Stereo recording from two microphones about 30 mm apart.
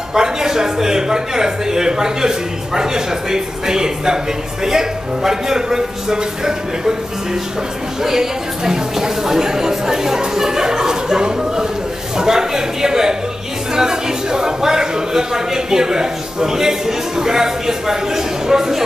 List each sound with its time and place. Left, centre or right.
0.1 s a man's voice: centre
8.0 s a man's voice: centre